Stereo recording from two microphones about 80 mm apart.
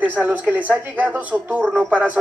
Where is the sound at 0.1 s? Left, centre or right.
Right.